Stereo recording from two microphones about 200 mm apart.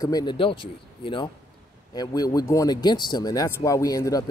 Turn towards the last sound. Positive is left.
turn(degrees=15)  # may be behind; listen again after turning